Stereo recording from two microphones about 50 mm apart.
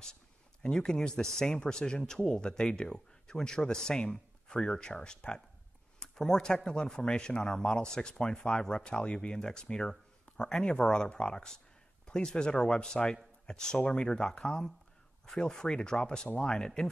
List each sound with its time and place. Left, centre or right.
0.0 s speech: centre